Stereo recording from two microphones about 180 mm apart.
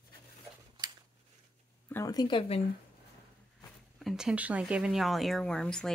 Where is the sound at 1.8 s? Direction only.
15° left (ahead or behind).